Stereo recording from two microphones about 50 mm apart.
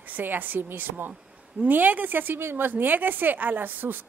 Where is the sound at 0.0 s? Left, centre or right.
Right.